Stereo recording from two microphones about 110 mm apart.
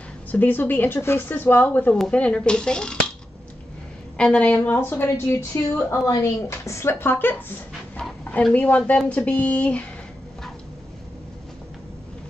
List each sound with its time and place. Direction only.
0.3 s speech: 15° left (ahead or behind)
4.2 s a woman's voice: 10° left (ahead or behind)
8.2 s a sound: 15° left (ahead or behind)
8.5 s speech: 15° left (ahead or behind)